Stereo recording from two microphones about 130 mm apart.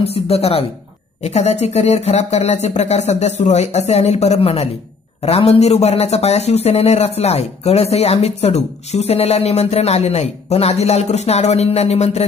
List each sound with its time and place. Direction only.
0.0 s speech: 50° left (ahead or behind)